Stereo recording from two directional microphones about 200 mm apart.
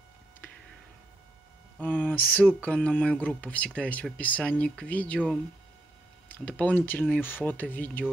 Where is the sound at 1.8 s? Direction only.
5° left (ahead or behind).